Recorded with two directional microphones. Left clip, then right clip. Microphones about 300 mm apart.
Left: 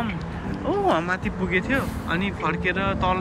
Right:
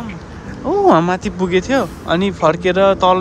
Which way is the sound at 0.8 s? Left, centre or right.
Right.